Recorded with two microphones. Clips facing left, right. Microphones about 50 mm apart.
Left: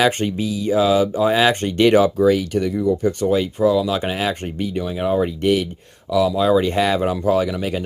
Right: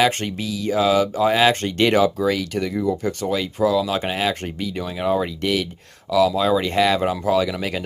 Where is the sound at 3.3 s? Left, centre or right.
Centre.